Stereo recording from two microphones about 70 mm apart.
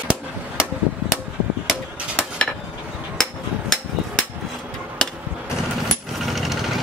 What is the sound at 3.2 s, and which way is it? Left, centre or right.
Hammer, centre.